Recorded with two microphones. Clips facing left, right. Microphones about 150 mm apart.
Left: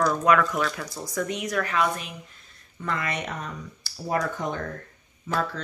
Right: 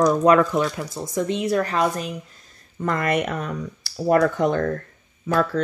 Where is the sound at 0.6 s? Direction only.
20° right (ahead or behind).